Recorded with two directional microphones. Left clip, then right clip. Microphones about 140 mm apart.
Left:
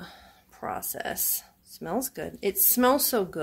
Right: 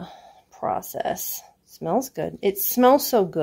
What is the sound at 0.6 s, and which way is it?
Speech, 35° right (ahead or behind).